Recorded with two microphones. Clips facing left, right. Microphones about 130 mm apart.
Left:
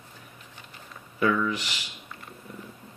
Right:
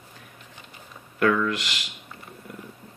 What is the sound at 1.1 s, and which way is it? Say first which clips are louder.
Speech: right 3 dB; 80° right.